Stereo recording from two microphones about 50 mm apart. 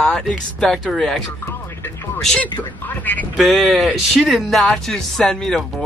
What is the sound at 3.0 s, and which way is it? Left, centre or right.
Speech, left.